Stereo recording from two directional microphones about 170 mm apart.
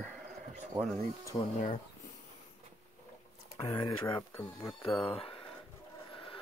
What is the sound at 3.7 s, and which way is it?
Speech, 25° left (ahead or behind).